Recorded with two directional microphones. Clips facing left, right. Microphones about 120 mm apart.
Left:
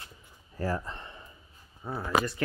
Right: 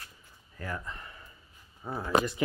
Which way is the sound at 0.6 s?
30° left (ahead or behind).